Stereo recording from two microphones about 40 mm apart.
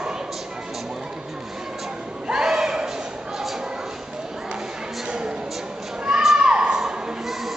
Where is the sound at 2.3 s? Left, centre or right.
Centre.